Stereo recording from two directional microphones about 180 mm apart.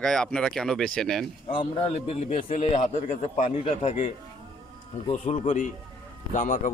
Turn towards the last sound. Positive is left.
turn(degrees=45)  # may be behind; listen again after turning